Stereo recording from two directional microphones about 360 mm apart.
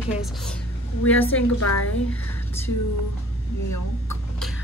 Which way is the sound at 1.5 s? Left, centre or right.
Left.